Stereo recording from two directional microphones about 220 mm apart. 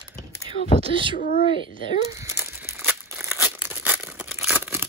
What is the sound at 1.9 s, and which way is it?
Crumpling, 15° right (ahead or behind).